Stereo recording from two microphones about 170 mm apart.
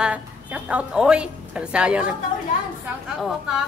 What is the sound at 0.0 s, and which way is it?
A woman's voice, 5° right (ahead or behind).